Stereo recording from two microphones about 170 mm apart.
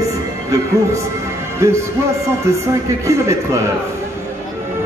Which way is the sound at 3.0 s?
15° right (ahead or behind).